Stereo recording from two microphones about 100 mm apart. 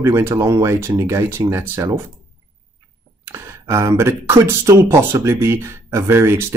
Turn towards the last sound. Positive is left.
turn(degrees=-25)  # may be behind; listen again after turning